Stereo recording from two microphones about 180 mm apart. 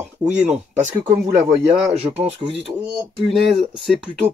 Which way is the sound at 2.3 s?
25° right (ahead or behind).